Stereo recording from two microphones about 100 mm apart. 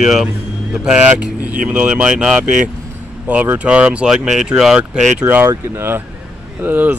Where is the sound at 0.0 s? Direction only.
5° right (ahead or behind).